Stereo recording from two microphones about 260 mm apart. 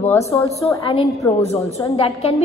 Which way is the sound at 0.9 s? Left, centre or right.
Left.